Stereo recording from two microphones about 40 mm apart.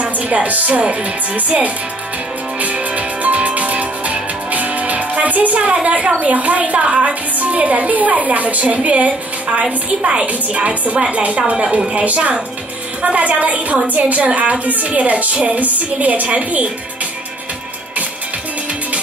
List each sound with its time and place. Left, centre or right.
0.0 s speech: right
2.6 s music: right
6.2 s speech: right
6.8 s music: right
7.3 s speech: right